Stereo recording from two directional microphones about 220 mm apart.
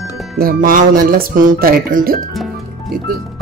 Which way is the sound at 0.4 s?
40° right (ahead or behind).